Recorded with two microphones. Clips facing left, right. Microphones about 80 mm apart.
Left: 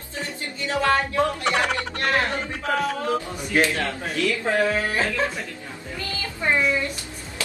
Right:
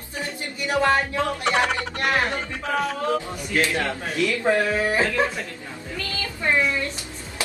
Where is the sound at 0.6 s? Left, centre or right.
Right.